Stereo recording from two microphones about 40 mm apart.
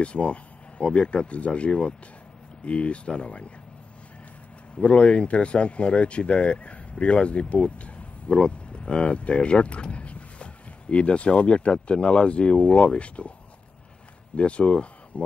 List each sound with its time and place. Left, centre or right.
0.0 s speech: left
4.7 s speech: left
14.3 s speech: left